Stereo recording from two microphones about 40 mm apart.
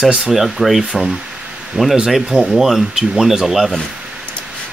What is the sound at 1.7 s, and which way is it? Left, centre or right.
Speech, right.